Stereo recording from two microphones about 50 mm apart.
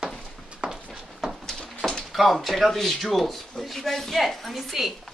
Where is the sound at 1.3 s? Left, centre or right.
Centre.